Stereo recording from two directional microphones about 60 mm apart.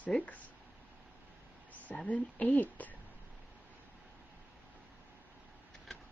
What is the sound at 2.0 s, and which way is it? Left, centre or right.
Speech, left.